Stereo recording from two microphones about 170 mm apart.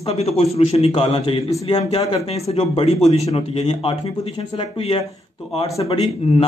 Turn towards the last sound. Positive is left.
turn(degrees=35)  # may be behind; listen again after turning